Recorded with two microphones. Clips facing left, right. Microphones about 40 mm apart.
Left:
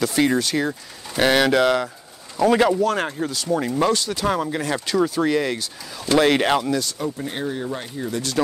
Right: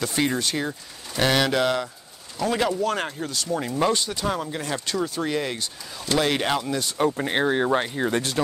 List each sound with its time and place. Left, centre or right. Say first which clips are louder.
0.0 s speech: left 5 dB; centre
0.7 s speech: left 4 dB; centre
2.3 s speech: left 7 dB; centre
2.8 s speech: left 4 dB; centre
3.9 s speech: left 3 dB; centre
4.3 s speech: left 7 dB; centre
6.0 s speech: left 6 dB; centre
7.1 s speech: right 4 dB; right